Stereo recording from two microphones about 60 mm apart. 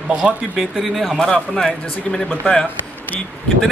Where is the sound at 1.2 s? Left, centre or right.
Centre.